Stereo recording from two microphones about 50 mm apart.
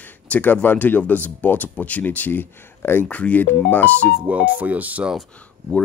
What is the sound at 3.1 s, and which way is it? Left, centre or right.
Speech, left.